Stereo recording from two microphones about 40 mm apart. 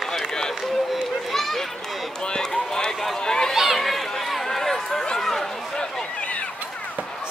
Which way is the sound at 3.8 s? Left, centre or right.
Centre.